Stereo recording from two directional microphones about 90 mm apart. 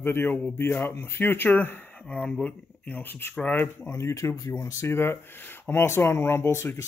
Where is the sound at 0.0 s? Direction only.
25° left (ahead or behind).